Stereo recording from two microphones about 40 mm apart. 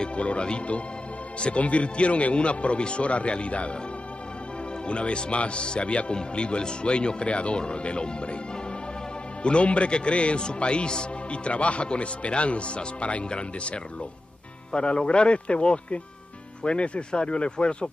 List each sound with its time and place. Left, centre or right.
0.0 s speech: left
4.8 s a man's voice: left
9.4 s a man's voice: left